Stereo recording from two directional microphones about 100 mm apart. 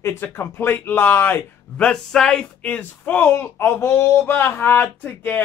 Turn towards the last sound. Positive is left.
turn(degrees=20)  # may be behind; listen again after turning